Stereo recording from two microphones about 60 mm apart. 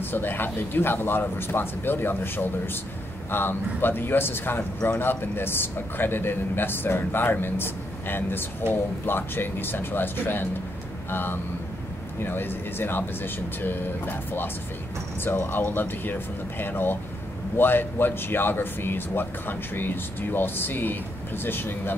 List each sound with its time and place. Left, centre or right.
0.0 s speech: left